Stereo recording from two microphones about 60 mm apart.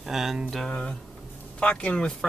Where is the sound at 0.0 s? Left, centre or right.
Centre.